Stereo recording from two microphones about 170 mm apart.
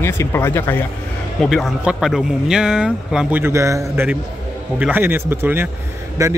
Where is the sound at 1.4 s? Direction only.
Centre (ahead or behind).